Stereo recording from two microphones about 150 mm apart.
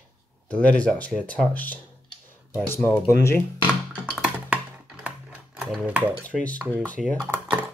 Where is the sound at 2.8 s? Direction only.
20° left (ahead or behind).